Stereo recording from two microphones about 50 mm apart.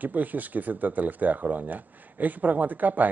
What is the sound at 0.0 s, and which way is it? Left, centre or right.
A man's voice, right.